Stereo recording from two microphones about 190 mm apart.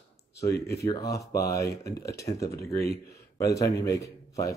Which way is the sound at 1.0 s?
55° left (ahead or behind).